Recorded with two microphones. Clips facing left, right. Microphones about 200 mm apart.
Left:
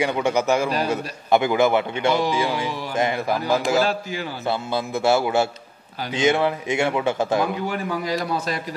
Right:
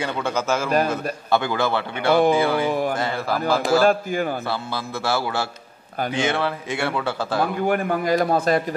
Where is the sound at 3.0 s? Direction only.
20° left (ahead or behind).